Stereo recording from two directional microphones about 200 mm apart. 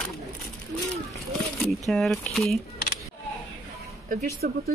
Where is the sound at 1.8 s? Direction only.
Centre (ahead or behind).